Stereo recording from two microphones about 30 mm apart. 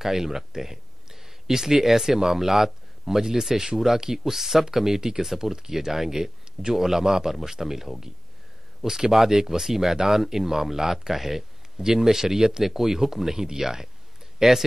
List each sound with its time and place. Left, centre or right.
0.0 s speech: centre